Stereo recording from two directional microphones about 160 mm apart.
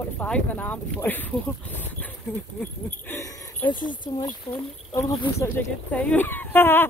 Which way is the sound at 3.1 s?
15° left (ahead or behind).